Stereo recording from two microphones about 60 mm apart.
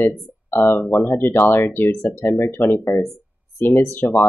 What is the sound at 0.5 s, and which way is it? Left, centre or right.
Speech, left.